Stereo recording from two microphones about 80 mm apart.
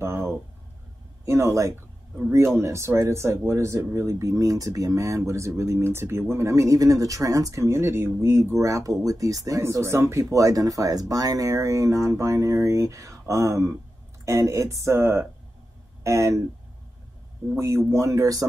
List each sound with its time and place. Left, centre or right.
0.0 s a sound: right
1.2 s speech: right
17.6 s speech: right